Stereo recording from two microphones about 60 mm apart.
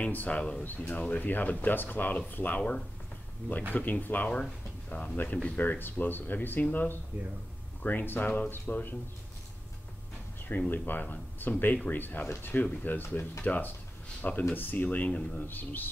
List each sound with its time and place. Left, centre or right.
0.0 s speech: left
4.3 s speech: left
10.7 s speech: left